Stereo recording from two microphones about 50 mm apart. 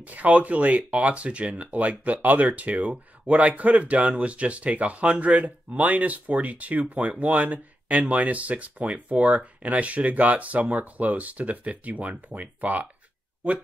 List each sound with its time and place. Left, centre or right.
0.0 s speech: right